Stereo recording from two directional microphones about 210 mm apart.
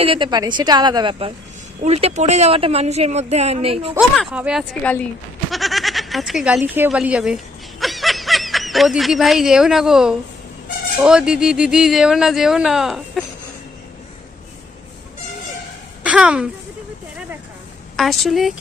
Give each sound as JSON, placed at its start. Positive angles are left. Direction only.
{"t": 0.0, "sound": "a woman's voice", "side_deg": -25}
{"t": 4.2, "sound": "speech", "side_deg": -5}
{"t": 7.8, "sound": "snicker", "side_deg": 0}
{"t": 11.0, "sound": "speech", "side_deg": -5}
{"t": 16.0, "sound": "a sound", "side_deg": -5}
{"t": 17.9, "sound": "speech", "side_deg": 0}